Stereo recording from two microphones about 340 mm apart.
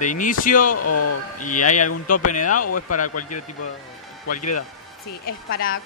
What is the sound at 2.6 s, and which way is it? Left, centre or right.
Speech, left.